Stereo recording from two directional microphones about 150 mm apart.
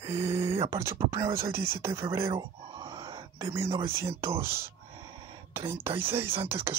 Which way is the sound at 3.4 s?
20° right (ahead or behind).